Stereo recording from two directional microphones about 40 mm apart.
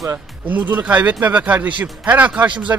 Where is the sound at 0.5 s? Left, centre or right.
Right.